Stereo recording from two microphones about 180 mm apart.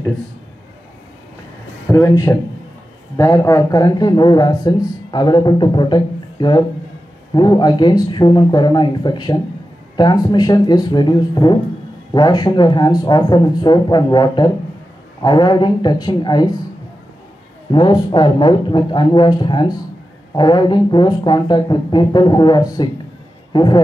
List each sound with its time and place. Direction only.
1.9 s speech: 20° left (ahead or behind)
17.7 s a man's voice: 25° left (ahead or behind)